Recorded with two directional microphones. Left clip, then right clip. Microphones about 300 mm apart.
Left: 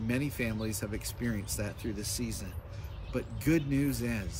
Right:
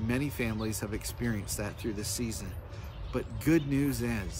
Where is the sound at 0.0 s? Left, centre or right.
Centre.